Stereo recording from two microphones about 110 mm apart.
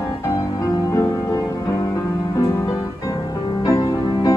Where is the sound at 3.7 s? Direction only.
30° left (ahead or behind).